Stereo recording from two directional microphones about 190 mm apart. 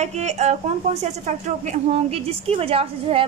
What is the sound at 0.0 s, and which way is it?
A woman's voice, 35° right (ahead or behind).